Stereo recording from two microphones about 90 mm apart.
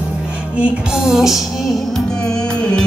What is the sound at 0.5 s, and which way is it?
Music, 10° right (ahead or behind).